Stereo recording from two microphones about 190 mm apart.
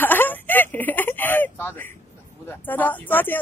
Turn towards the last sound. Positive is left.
turn(degrees=10)  # may be behind; listen again after turning